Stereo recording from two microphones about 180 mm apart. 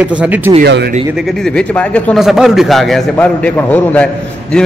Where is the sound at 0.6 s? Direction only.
65° right (ahead or behind).